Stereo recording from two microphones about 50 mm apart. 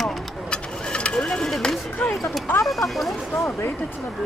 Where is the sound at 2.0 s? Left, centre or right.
Left.